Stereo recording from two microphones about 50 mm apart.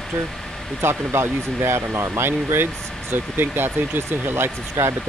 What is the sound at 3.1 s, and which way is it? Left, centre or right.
Speech, right.